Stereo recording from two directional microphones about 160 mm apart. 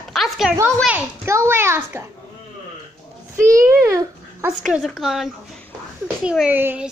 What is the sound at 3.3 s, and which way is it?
A child's voice, 15° right (ahead or behind).